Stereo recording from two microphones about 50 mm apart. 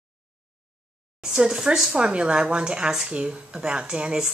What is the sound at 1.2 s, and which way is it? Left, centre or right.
A woman's voice, centre.